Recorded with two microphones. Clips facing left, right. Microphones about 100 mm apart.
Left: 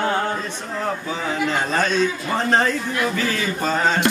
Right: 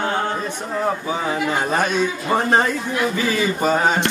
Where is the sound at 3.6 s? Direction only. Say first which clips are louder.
Right 2 dB; 15° right (ahead or behind).